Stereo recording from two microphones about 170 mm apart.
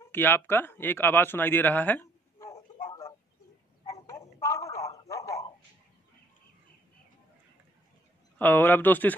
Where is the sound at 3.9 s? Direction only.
15° left (ahead or behind).